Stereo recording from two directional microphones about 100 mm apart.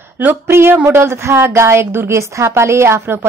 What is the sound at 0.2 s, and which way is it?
A woman's voice, 20° right (ahead or behind).